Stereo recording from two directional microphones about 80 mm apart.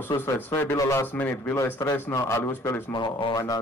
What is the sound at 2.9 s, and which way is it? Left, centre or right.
Speech, left.